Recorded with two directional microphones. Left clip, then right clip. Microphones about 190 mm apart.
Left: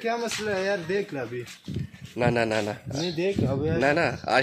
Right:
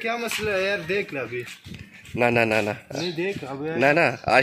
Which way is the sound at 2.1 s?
15° right (ahead or behind).